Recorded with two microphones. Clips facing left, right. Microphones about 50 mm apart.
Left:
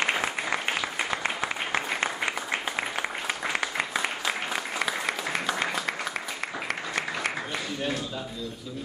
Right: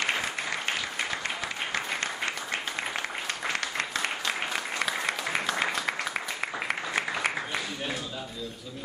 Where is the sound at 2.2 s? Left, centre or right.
Centre.